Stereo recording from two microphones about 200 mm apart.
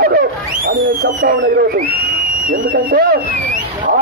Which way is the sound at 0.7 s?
50° right (ahead or behind).